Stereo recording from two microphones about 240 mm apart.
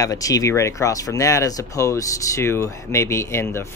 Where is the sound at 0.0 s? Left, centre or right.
Centre.